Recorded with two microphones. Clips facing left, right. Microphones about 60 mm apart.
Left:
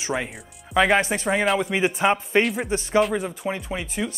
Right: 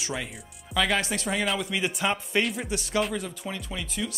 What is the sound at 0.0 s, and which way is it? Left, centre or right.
Speech, left.